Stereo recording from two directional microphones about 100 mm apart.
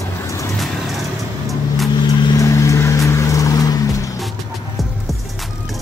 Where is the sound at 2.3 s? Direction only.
30° left (ahead or behind).